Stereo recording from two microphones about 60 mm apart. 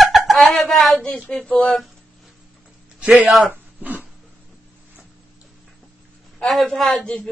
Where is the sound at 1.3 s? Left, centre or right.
Centre.